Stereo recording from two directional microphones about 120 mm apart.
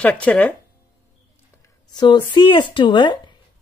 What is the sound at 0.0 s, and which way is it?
Speech, 10° left (ahead or behind).